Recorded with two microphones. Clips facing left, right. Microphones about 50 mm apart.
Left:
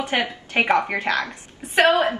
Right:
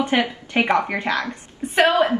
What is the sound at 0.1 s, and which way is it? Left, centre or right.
Speech, left.